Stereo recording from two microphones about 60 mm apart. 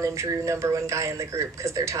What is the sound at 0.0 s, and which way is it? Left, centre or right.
Speech, right.